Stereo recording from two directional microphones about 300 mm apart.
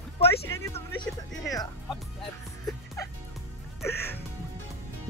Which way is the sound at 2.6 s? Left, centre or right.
Centre.